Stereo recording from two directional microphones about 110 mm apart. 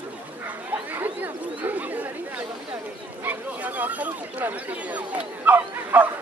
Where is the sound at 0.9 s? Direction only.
15° right (ahead or behind).